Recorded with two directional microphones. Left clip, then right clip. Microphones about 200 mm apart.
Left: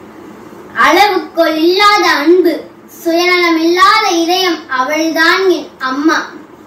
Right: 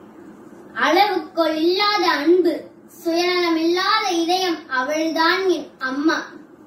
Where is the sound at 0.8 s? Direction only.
20° right (ahead or behind).